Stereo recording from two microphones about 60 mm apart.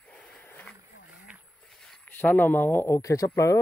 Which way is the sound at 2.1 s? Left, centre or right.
Left.